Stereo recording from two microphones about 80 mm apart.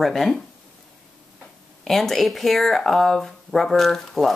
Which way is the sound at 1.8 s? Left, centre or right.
Centre.